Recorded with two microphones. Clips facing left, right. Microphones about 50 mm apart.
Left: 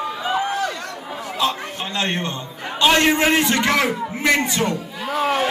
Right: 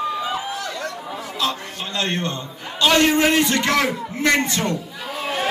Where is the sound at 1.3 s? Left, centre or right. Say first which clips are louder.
Left 3 dB; left.